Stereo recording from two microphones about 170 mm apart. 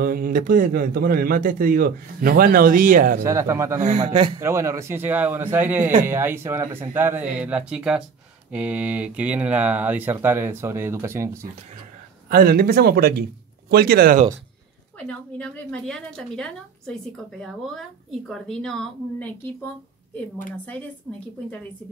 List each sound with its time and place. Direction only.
0.0 s a man's voice: 55° right (ahead or behind)
3.2 s speech: 15° right (ahead or behind)
3.8 s a man's voice: 40° right (ahead or behind)
4.4 s speech: 15° right (ahead or behind)
12.3 s a man's voice: 60° right (ahead or behind)
15.0 s a woman's voice: 5° left (ahead or behind)